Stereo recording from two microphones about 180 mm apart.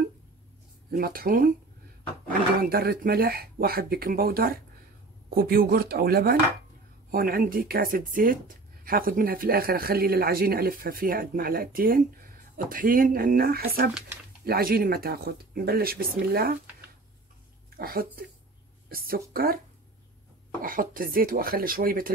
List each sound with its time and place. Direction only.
0.9 s speech: 55° right (ahead or behind)
17.7 s speech: 55° right (ahead or behind)
20.6 s speech: 50° right (ahead or behind)